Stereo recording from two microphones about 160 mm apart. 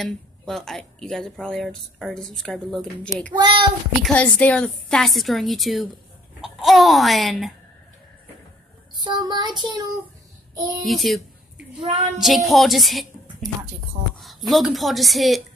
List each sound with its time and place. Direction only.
0.0 s speech: centre (ahead or behind)
3.3 s a child's voice: 30° right (ahead or behind)
4.0 s speech: 10° left (ahead or behind)
8.9 s child singing: 30° right (ahead or behind)
10.8 s speech: centre (ahead or behind)